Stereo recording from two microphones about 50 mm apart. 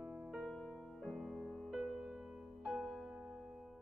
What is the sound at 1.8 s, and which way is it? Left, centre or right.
Music, centre.